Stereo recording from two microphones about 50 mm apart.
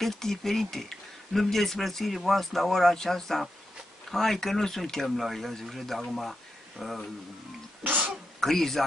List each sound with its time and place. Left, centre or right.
0.0 s speech: centre
7.8 s throat clearing: right
8.4 s speech: centre